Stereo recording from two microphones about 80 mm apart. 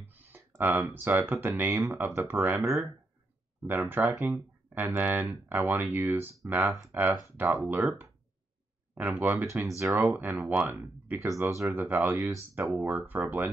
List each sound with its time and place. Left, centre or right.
0.0 s a sound: right
0.6 s speech: right
2.6 s speech: right
3.6 s speech: right
8.9 s speech: right
9.5 s speech: right